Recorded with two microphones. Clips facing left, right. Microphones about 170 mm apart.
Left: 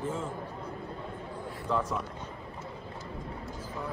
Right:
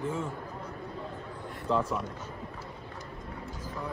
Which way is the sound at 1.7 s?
30° right (ahead or behind).